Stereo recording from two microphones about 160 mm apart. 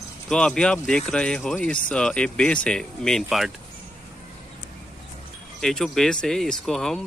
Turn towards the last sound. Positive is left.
turn(degrees=0)  # may be behind; listen again after turning